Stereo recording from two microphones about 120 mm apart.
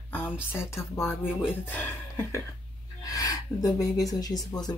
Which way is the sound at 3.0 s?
30° left (ahead or behind).